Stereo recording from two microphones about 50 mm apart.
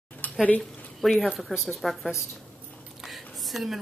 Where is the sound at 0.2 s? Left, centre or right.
Left.